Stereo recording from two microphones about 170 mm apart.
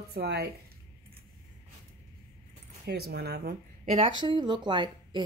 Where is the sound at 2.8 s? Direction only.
70° right (ahead or behind).